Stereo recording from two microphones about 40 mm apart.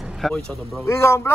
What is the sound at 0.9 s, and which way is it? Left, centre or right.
Speech, left.